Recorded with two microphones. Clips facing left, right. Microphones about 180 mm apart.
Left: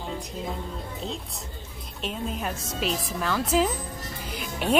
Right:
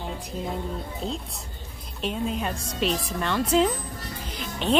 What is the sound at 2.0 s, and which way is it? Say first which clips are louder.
Speech: right 3 dB; centre (ahead or behind).